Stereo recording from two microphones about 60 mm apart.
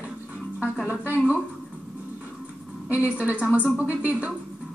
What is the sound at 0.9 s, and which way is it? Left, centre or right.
Speech, right.